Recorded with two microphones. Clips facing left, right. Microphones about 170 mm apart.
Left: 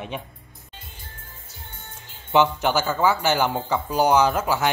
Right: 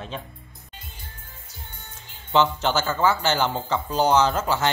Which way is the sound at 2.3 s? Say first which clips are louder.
Left 2 dB; 15° left (ahead or behind).